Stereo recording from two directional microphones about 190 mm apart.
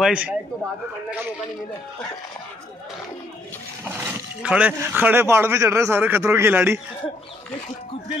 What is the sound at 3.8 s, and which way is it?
Speech, 10° right (ahead or behind).